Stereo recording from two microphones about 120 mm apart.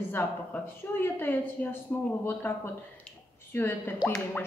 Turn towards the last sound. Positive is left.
turn(degrees=15)  # may be behind; listen again after turning